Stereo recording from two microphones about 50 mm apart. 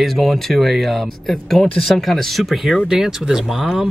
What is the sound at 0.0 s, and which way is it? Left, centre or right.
Speech, centre.